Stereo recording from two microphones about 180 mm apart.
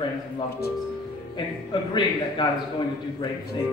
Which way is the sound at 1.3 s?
25° left (ahead or behind).